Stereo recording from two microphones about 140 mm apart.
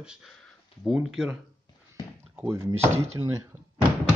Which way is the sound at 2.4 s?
20° right (ahead or behind).